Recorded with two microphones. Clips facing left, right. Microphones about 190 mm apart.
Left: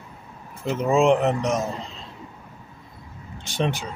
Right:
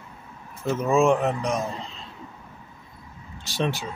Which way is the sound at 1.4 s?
45° left (ahead or behind).